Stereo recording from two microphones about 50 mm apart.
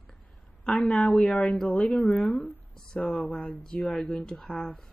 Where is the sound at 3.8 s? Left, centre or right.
Centre.